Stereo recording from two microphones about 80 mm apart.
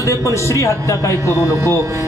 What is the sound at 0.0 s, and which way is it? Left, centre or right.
Speech, left.